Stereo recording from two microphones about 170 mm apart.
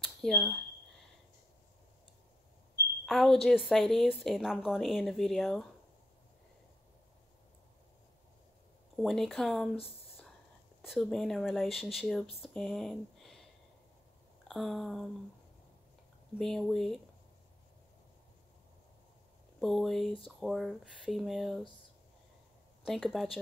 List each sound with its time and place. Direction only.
0.0 s speech: centre (ahead or behind)
3.1 s a woman's voice: centre (ahead or behind)
8.9 s a woman's voice: centre (ahead or behind)
10.8 s a woman's voice: centre (ahead or behind)
14.5 s a woman's voice: centre (ahead or behind)
16.3 s a woman's voice: centre (ahead or behind)
19.6 s a woman's voice: centre (ahead or behind)
22.8 s a woman's voice: centre (ahead or behind)